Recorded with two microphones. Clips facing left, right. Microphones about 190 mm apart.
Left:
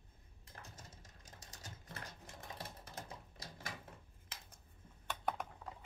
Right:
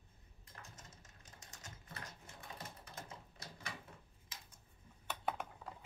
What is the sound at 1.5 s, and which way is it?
Sewing machine, 35° left (ahead or behind).